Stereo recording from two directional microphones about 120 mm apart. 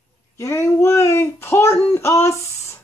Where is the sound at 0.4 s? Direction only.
25° left (ahead or behind).